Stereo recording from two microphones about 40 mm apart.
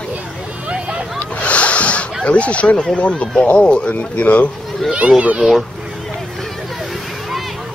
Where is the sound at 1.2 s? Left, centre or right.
Left.